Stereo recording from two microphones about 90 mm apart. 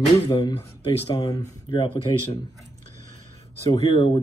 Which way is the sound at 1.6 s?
80° left.